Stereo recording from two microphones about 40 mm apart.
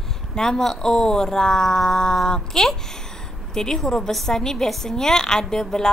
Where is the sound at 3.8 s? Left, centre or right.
Centre.